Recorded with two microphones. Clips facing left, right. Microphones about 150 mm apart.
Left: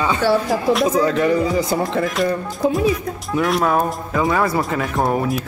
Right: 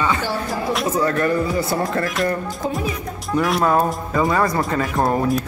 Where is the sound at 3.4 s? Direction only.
Centre (ahead or behind).